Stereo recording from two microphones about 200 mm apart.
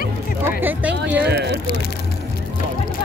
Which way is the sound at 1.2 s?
55° right (ahead or behind).